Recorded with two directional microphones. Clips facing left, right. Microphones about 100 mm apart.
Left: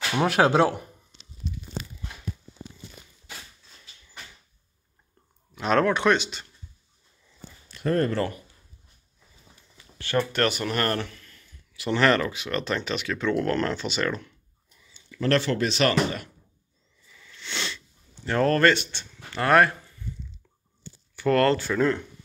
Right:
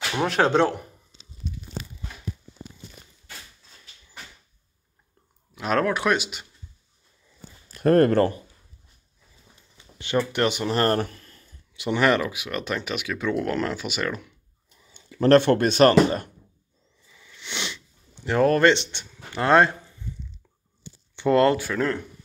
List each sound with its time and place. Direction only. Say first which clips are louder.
0.1 s speech: left 1 dB; 5° left (ahead or behind)
5.5 s speech: left 1 dB; 5° right (ahead or behind)
7.7 s speech: right 7 dB; 55° right (ahead or behind)
9.8 s a sound: left 1 dB; 20° right (ahead or behind)
10.3 s speech: right 1 dB; 15° right (ahead or behind)
10.7 s speech: right 4 dB; 30° right (ahead or behind)
11.0 s a sound: right 5 dB; 40° right (ahead or behind)
11.7 s speech: right 1 dB; 15° right (ahead or behind)
14.9 s speech: right 7 dB; 45° right (ahead or behind)
17.1 s sniff: even; 15° right (ahead or behind)
19.3 s speech: right 1 dB; 20° right (ahead or behind)
20.8 s a sound: right 1 dB; 20° right (ahead or behind)
21.7 s speech: left 2 dB; centre (ahead or behind)